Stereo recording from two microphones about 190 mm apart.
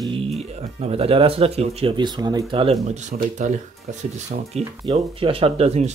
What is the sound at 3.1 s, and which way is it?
Speech, 45° right (ahead or behind).